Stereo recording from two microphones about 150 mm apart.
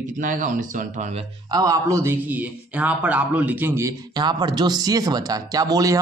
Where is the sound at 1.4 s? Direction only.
25° right (ahead or behind).